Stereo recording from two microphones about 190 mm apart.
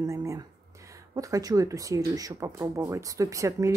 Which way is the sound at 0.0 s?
15° right (ahead or behind).